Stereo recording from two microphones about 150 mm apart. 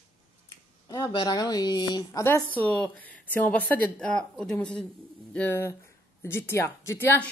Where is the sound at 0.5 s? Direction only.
25° left (ahead or behind).